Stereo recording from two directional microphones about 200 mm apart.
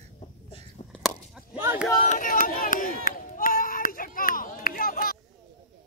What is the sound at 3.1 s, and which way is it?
Chop, 45° left (ahead or behind).